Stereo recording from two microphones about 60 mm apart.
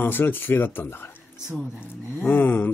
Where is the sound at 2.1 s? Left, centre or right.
Left.